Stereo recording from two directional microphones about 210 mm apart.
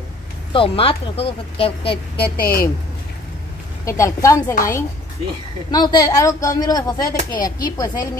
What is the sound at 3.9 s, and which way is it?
Speech, 15° left (ahead or behind).